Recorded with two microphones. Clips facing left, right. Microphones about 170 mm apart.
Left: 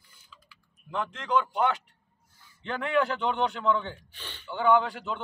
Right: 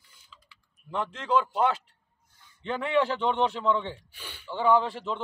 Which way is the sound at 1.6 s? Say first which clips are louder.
Right 1 dB; 30° right (ahead or behind).